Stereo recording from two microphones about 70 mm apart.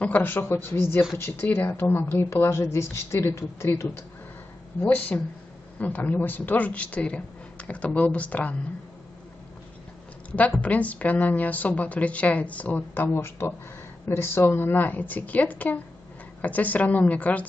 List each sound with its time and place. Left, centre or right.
0.0 s speech: left
4.8 s a woman's voice: left
10.3 s a woman's voice: left